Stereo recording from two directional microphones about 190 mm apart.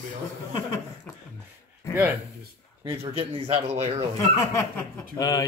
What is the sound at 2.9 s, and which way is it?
A man's voice, 30° right (ahead or behind).